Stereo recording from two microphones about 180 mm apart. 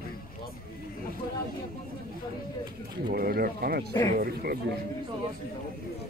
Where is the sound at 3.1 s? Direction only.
55° right (ahead or behind).